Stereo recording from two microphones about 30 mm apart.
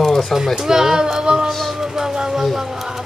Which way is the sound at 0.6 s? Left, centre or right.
Centre.